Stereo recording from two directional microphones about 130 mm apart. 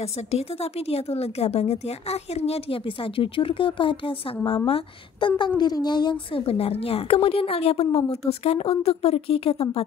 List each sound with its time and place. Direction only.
0.3 s speech: 50° left (ahead or behind)
5.6 s speech: 30° left (ahead or behind)
6.4 s speech: 50° left (ahead or behind)